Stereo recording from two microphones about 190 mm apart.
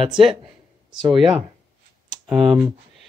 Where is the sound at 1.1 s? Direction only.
Centre (ahead or behind).